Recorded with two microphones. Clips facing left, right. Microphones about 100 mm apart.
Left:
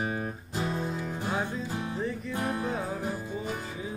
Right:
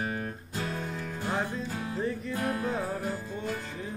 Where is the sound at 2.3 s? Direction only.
20° left (ahead or behind).